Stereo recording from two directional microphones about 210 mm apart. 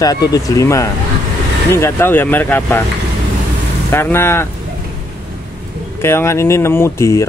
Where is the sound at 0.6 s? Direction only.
15° left (ahead or behind).